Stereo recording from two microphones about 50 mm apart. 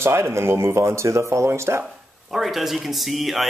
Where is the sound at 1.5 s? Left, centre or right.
Right.